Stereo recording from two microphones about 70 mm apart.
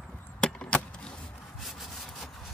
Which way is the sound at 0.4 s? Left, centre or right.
Centre.